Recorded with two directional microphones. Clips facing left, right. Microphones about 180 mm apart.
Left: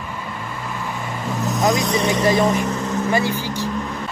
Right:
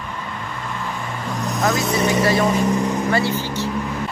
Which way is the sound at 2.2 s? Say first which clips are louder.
Left 2 dB; 15° left (ahead or behind).